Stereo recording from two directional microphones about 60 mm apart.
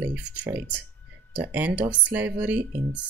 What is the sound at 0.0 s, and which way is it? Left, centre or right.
Speech, right.